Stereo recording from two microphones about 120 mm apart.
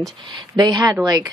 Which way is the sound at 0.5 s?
35° right (ahead or behind).